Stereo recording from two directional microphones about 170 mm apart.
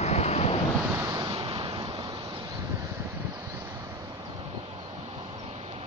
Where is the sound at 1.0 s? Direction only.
25° right (ahead or behind).